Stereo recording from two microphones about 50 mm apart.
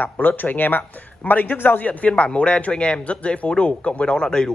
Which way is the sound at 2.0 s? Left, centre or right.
Left.